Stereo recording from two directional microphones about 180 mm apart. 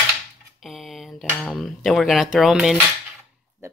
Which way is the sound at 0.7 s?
Centre (ahead or behind).